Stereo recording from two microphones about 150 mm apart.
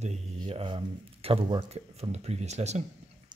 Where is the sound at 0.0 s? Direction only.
40° right (ahead or behind).